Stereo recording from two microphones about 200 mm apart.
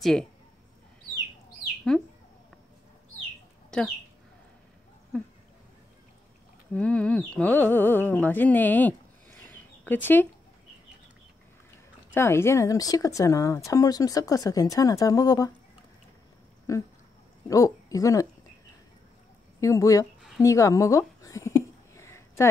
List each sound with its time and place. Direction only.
0.0 s speech: centre (ahead or behind)
1.9 s speech: 5° left (ahead or behind)
6.7 s speech: 5° left (ahead or behind)
12.1 s speech: 10° left (ahead or behind)
16.7 s speech: 15° left (ahead or behind)
19.6 s speech: 15° left (ahead or behind)
20.4 s a sound: 15° left (ahead or behind)